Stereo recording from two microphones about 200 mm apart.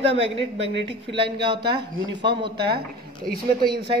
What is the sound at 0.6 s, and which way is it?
Speech, 60° right (ahead or behind).